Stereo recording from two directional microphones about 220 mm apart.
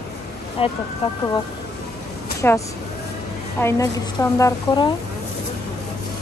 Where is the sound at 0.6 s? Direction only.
25° left (ahead or behind).